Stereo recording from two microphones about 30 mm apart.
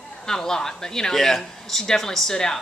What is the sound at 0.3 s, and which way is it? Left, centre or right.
Speech, centre.